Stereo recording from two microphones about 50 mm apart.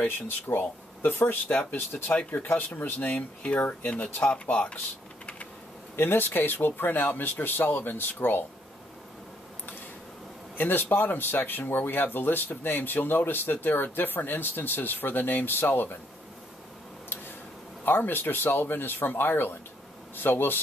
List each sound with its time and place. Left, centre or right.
0.6 s speech: left
5.9 s speech: left
10.6 s speech: left
17.8 s speech: left